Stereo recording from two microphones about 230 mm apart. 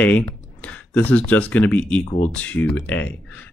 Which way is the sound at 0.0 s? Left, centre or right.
Centre.